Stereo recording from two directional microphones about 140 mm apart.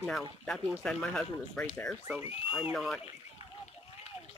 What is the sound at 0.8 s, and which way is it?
Speech, 5° left (ahead or behind).